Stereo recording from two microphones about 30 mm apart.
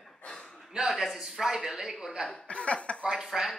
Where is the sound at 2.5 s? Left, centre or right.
Left.